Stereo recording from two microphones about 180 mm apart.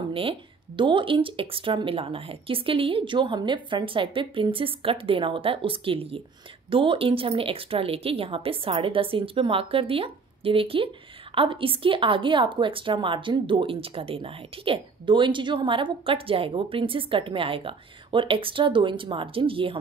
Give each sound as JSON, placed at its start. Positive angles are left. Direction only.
{"t": 0.1, "sound": "a woman's voice", "side_deg": -30}